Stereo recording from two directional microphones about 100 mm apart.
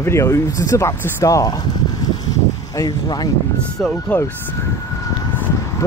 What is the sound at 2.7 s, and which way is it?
Speech, 40° left (ahead or behind).